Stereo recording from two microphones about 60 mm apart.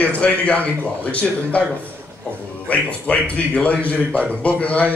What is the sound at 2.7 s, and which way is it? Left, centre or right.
A man's voice, left.